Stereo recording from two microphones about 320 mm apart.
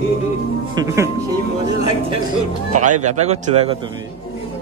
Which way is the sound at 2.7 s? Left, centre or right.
Right.